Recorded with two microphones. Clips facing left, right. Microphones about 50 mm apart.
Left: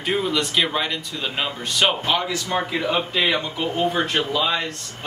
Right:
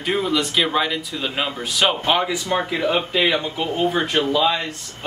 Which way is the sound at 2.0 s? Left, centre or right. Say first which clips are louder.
Right 3 dB; centre.